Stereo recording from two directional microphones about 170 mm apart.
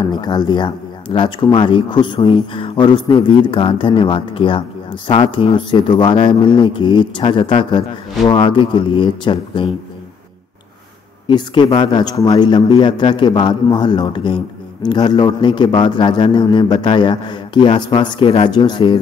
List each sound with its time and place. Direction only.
0.1 s a man's voice: 25° left (ahead or behind)
11.2 s a man's voice: 25° left (ahead or behind)